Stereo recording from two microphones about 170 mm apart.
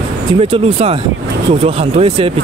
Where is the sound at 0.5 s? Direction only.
30° right (ahead or behind).